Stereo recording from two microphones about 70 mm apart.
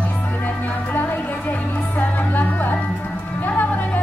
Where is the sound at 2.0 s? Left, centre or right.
Left.